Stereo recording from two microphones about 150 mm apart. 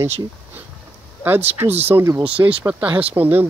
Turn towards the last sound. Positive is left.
turn(degrees=-15)  # may be behind; listen again after turning